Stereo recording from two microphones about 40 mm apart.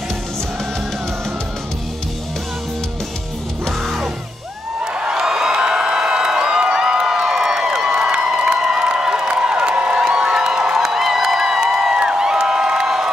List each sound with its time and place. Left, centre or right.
3.6 s music: centre
4.9 s crowd: right
11.9 s crowd: right